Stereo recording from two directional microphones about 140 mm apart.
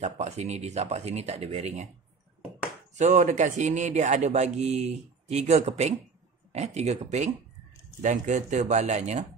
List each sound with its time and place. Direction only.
0.0 s speech: 50° right (ahead or behind)
3.0 s a man's voice: 60° right (ahead or behind)
8.0 s a man's voice: 60° right (ahead or behind)